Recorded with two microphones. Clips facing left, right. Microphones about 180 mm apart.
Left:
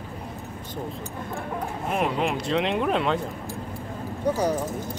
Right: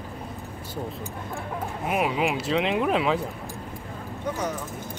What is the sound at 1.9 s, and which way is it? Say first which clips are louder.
Speech: even; 5° right (ahead or behind).